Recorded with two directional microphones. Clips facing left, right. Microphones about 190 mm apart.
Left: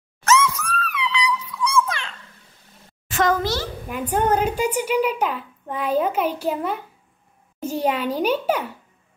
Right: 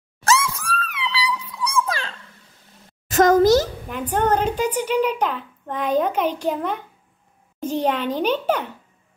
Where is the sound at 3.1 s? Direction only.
40° right (ahead or behind).